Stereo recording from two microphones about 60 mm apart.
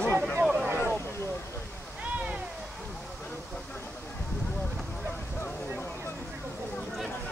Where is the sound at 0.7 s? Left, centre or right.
Left.